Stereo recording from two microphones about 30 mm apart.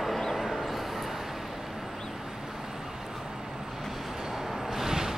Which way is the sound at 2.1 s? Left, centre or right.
Centre.